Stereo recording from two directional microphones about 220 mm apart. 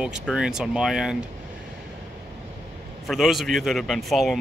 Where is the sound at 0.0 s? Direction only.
5° right (ahead or behind).